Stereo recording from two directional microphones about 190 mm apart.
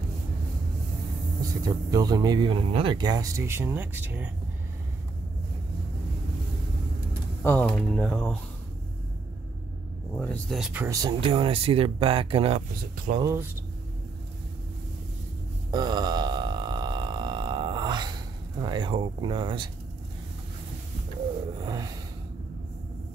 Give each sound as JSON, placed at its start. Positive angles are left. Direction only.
{"t": 1.6, "sound": "speech", "side_deg": -20}
{"t": 7.4, "sound": "speech", "side_deg": 10}
{"t": 10.1, "sound": "speech", "side_deg": 5}
{"t": 10.6, "sound": "speech", "side_deg": -10}
{"t": 13.2, "sound": "speech", "side_deg": -15}
{"t": 15.7, "sound": "burping", "side_deg": -20}
{"t": 21.5, "sound": "a sound", "side_deg": -20}